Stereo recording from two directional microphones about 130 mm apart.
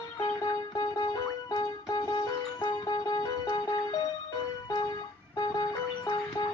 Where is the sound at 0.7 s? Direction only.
30° left (ahead or behind).